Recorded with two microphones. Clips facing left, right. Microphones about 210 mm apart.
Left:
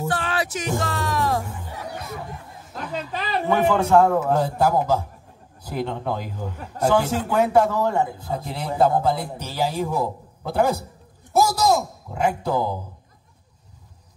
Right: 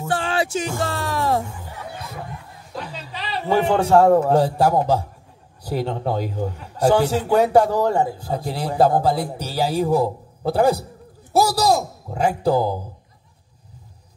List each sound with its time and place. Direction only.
0.1 s music: 30° right (ahead or behind)
2.8 s a sound: 50° left (ahead or behind)
3.4 s a man's voice: 30° right (ahead or behind)